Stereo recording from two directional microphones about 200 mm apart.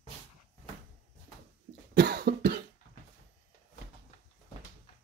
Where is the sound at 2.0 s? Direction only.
55° right (ahead or behind).